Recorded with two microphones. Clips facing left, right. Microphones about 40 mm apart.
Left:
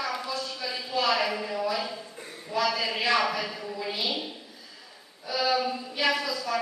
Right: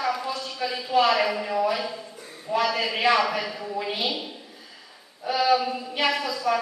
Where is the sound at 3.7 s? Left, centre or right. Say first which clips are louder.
Right 5 dB; right.